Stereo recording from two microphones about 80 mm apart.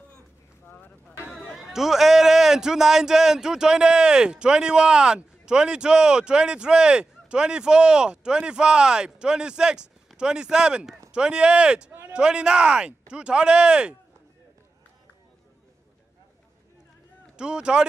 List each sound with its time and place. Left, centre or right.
0.7 s vehicle: left
1.3 s a man's voice: centre
17.4 s a man's voice: centre